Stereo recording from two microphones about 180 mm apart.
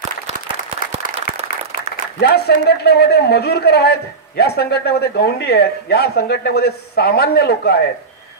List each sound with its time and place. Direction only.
0.9 s applause: 35° right (ahead or behind)
2.2 s speech: 65° left (ahead or behind)